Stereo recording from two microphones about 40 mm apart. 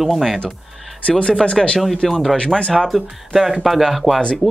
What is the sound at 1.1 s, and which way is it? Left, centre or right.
Speech, left.